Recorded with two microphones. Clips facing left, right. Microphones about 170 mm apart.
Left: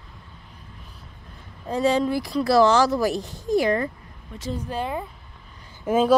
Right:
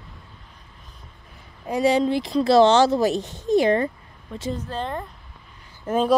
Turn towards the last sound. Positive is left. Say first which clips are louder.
# left 2 dB
turn(degrees=5)  # may be behind; listen again after turning